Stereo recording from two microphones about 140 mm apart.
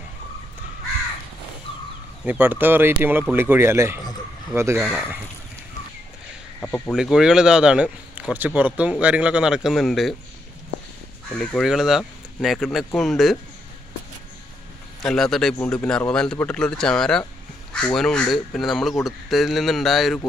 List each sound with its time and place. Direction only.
2.2 s speech: 15° right (ahead or behind)
6.6 s speech: 5° left (ahead or behind)
7.0 s speech: 5° right (ahead or behind)
11.3 s speech: centre (ahead or behind)
15.0 s speech: centre (ahead or behind)